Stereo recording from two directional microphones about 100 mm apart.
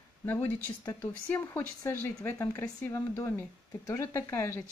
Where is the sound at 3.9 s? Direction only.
30° left (ahead or behind).